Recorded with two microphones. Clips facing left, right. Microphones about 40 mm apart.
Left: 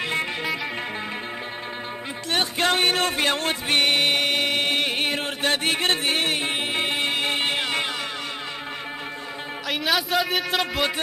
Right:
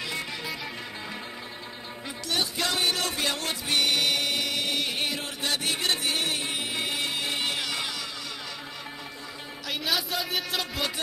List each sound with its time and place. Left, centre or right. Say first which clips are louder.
2.3 s music: left 6 dB; left
9.7 s a man's voice: left 6 dB; centre